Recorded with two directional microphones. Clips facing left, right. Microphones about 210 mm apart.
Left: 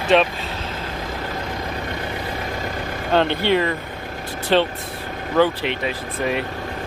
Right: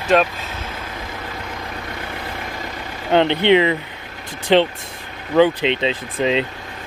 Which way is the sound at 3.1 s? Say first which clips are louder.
Right 4 dB; 20° right (ahead or behind).